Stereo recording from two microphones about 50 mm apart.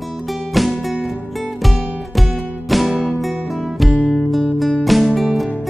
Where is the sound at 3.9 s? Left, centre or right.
Left.